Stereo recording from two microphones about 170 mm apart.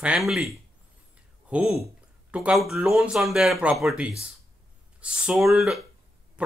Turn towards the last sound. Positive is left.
turn(degrees=-10)  # may be behind; listen again after turning